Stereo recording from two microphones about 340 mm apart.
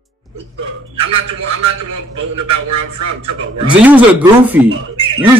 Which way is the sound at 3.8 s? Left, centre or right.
Centre.